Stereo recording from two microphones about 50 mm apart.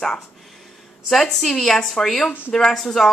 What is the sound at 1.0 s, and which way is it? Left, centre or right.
A woman's voice, centre.